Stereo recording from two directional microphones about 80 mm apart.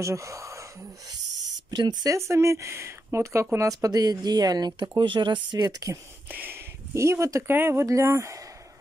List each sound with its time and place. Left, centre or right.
0.0 s speech: right
1.7 s speech: right
2.0 s speech: right
4.8 s speech: right
5.6 s speech: right
6.3 s speech: right
6.9 s speech: right
7.8 s speech: right